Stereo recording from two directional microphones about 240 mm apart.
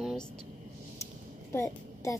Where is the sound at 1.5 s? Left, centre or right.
Centre.